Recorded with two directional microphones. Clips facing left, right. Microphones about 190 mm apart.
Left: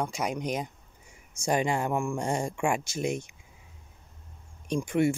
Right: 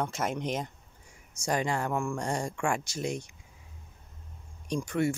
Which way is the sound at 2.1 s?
25° left (ahead or behind).